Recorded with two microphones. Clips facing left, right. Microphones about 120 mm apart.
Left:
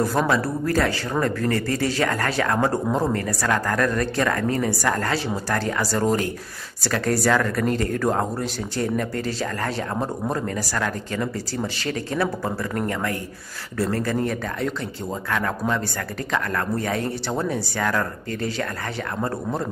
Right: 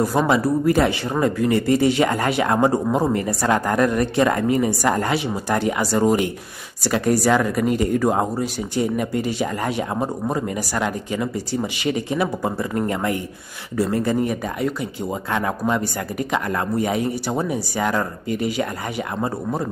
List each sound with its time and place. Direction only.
0.3 s speech: 15° right (ahead or behind)